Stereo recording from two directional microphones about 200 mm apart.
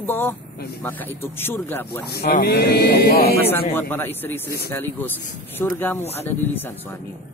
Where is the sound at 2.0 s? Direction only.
55° left (ahead or behind).